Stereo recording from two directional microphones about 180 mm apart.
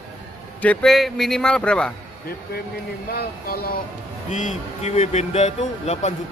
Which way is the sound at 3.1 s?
60° left (ahead or behind).